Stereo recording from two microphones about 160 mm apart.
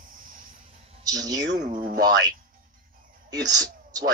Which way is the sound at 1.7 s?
60° right (ahead or behind).